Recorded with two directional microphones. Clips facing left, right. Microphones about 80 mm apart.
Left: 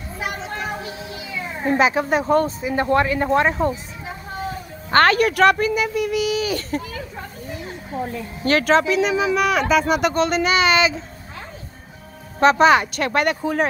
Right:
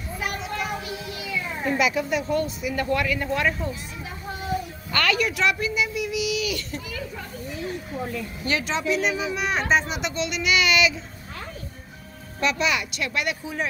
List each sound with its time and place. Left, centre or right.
0.2 s children playing: left
1.7 s speech: left
2.6 s speech: left
4.9 s speech: left
8.5 s speech: left
8.8 s speech: left
12.4 s speech: left
13.4 s speech: left